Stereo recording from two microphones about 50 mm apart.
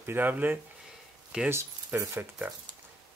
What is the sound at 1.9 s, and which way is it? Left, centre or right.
Speech, right.